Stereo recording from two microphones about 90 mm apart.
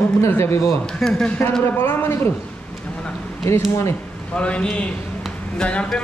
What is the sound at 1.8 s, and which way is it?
Speech, 25° left (ahead or behind).